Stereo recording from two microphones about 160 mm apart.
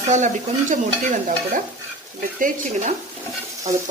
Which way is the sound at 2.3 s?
55° right (ahead or behind).